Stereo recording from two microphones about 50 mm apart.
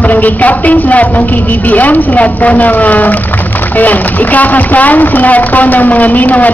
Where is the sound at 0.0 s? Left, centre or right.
Left.